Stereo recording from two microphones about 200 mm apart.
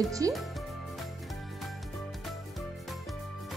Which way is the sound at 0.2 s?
20° right (ahead or behind).